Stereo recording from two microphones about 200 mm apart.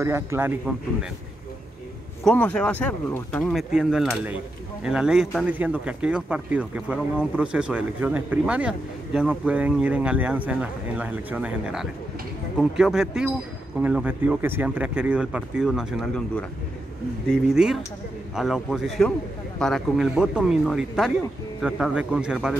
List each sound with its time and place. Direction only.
0.0 s a man's voice: 15° right (ahead or behind)
2.2 s speech: 5° left (ahead or behind)